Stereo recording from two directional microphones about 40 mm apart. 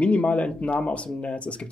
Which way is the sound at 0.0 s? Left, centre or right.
Left.